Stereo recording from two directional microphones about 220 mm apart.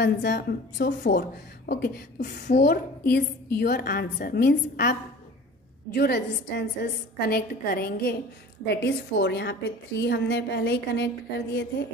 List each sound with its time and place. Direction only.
0.0 s a woman's voice: 45° left (ahead or behind)
5.9 s a woman's voice: 45° left (ahead or behind)